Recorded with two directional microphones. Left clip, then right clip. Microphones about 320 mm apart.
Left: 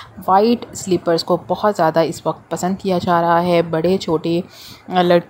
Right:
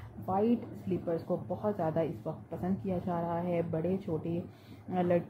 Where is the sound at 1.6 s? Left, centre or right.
Left.